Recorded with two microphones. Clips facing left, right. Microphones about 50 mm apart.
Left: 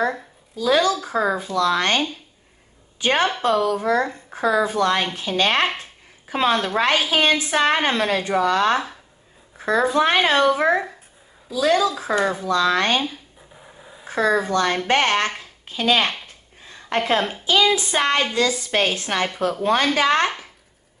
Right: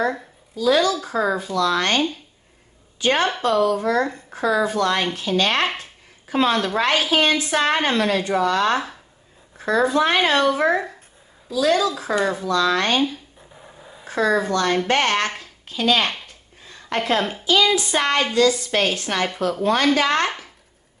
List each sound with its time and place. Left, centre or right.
0.6 s a woman's voice: left
12.0 s speech: centre
12.4 s speech: left
13.6 s a sound: centre
14.0 s speech: centre
16.6 s a sound: left
17.0 s speech: centre
17.5 s speech: left
20.2 s speech: centre